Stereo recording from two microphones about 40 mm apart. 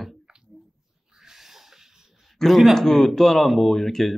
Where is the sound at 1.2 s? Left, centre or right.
Centre.